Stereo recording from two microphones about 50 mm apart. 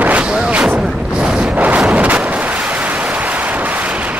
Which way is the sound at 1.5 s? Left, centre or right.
Right.